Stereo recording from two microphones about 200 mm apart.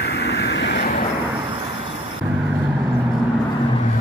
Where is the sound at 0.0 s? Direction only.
55° left (ahead or behind).